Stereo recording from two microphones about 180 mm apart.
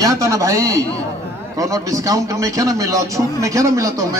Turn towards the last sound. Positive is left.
turn(degrees=-20)  # may be behind; listen again after turning